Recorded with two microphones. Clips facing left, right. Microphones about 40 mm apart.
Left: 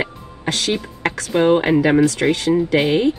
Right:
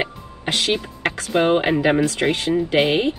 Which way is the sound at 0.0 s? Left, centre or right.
Right.